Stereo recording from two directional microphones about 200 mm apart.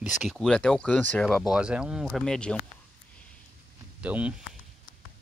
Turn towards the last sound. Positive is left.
turn(degrees=-5)  # may be behind; listen again after turning